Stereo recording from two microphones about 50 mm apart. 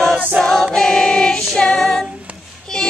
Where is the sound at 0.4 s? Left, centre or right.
Centre.